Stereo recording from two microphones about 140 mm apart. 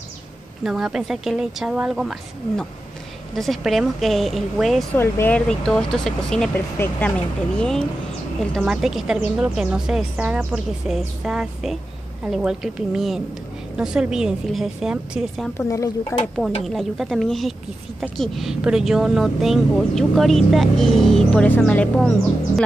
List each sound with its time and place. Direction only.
0.7 s speech: 5° right (ahead or behind)
4.9 s speech: 15° left (ahead or behind); by 15.5 s 5° right (ahead or behind)
15.5 s speech: 25° left (ahead or behind)
16.6 s speech: centre (ahead or behind)